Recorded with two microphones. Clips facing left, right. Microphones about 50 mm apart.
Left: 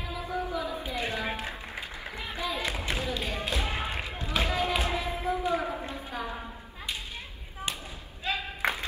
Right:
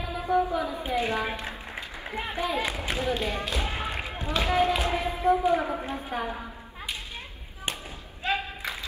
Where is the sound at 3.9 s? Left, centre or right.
Right.